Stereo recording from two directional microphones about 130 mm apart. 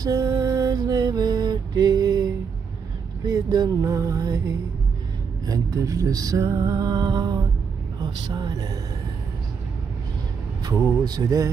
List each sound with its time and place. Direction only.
0.0 s mantra: 30° right (ahead or behind)
3.3 s music: 25° right (ahead or behind)
5.5 s music: 25° right (ahead or behind)
8.0 s speech: 30° right (ahead or behind)
10.6 s music: 30° right (ahead or behind)